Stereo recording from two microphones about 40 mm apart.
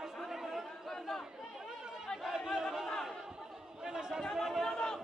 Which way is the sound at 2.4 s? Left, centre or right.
Centre.